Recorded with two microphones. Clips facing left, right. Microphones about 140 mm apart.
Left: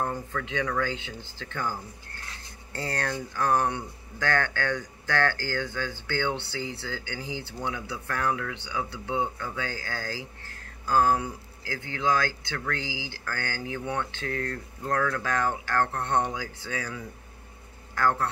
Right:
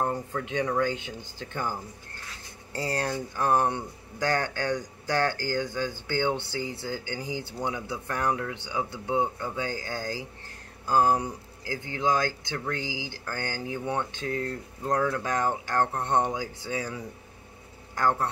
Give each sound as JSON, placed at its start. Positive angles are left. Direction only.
{"t": 0.0, "sound": "speech", "side_deg": -30}
{"t": 0.9, "sound": "speech", "side_deg": -15}
{"t": 2.8, "sound": "speech", "side_deg": -15}